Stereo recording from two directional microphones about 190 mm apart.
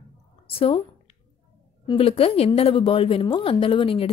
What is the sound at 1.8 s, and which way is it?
A woman's voice, 30° left (ahead or behind).